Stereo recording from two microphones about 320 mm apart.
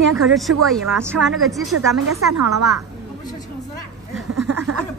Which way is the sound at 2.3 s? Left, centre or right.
Right.